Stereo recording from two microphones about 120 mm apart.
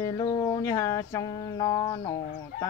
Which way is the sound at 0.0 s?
30° left (ahead or behind).